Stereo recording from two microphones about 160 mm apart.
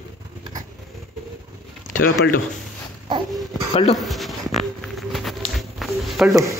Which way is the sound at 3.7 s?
40° left (ahead or behind).